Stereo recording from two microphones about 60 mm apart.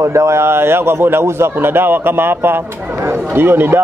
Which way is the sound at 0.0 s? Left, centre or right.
Right.